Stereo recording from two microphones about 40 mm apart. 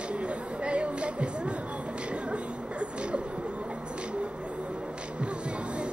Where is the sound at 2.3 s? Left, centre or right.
Right.